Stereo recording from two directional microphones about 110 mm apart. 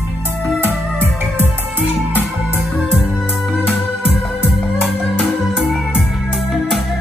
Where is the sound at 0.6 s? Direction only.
20° right (ahead or behind).